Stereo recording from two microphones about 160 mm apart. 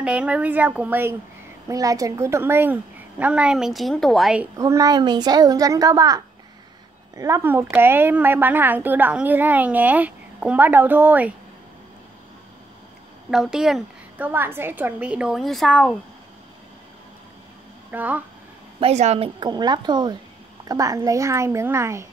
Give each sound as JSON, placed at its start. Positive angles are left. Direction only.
{"t": 0.0, "sound": "a woman's voice", "side_deg": -5}
{"t": 4.6, "sound": "a woman's voice", "side_deg": -20}
{"t": 13.3, "sound": "a woman's voice", "side_deg": -5}
{"t": 17.9, "sound": "a woman's voice", "side_deg": -10}
{"t": 18.8, "sound": "a woman's voice", "side_deg": -40}